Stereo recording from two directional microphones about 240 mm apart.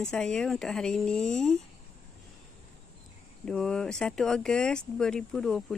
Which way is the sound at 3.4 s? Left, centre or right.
Centre.